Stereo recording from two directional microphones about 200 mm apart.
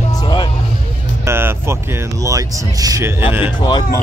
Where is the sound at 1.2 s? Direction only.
10° right (ahead or behind).